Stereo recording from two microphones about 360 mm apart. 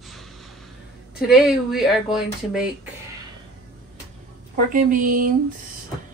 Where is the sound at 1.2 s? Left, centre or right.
Centre.